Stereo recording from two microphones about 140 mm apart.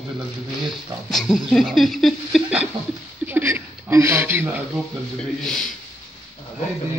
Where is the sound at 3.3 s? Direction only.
15° right (ahead or behind).